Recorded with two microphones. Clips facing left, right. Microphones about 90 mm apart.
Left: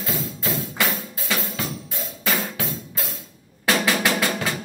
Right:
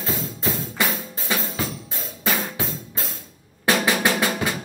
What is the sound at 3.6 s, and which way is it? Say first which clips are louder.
Drum: right 1 dB; 20° right (ahead or behind).